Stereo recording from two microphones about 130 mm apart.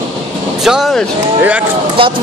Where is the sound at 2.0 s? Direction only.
45° right (ahead or behind).